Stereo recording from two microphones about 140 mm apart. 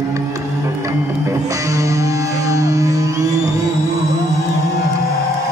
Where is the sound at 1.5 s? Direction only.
25° right (ahead or behind).